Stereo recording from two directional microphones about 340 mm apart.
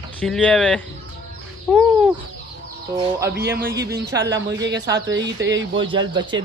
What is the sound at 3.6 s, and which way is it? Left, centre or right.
A man's voice, right.